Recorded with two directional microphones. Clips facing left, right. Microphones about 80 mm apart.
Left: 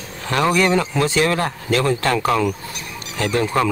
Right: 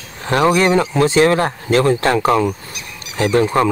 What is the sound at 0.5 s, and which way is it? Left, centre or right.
Speech, right.